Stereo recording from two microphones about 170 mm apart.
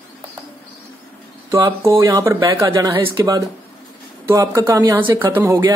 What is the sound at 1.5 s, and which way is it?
A man's voice, 15° right (ahead or behind).